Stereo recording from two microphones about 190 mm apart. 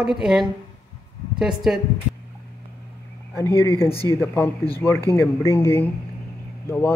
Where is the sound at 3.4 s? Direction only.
15° left (ahead or behind).